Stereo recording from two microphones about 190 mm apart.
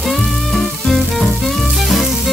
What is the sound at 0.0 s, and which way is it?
Music, centre (ahead or behind).